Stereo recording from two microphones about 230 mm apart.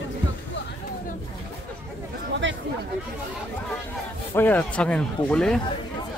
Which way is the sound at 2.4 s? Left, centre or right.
Right.